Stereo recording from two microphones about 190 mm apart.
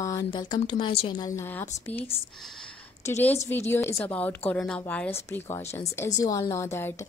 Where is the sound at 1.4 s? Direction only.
10° left (ahead or behind).